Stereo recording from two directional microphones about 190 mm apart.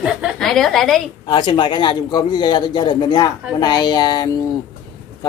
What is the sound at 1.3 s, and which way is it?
A man's voice, 25° left (ahead or behind).